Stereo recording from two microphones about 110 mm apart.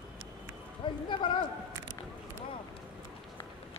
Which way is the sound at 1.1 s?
50° left (ahead or behind).